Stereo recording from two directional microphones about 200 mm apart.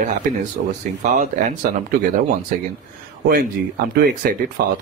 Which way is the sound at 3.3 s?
50° right (ahead or behind).